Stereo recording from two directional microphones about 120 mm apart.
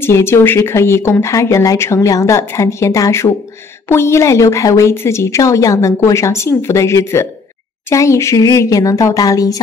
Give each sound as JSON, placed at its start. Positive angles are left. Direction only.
{"t": 0.0, "sound": "speech", "side_deg": 20}